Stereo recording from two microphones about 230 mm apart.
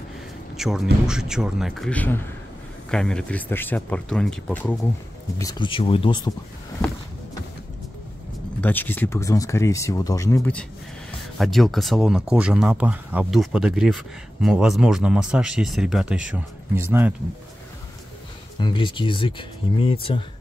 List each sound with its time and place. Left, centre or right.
0.6 s a man's voice: centre
5.4 s speech: centre
8.5 s speech: centre
18.6 s speech: centre